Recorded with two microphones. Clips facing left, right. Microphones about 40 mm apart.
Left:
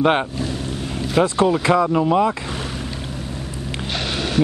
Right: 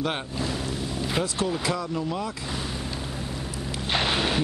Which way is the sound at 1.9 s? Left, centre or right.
Left.